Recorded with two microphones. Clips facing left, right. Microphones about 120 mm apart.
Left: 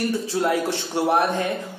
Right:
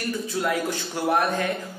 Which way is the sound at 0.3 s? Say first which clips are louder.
Left 2 dB; 30° left (ahead or behind).